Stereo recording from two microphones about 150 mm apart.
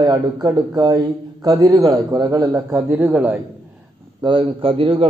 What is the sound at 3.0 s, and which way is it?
Speech, centre (ahead or behind).